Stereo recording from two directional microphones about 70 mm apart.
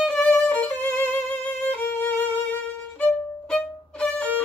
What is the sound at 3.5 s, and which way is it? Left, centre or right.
Music, centre.